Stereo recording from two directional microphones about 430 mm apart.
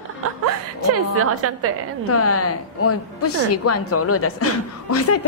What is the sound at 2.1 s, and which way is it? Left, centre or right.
A woman's voice, left.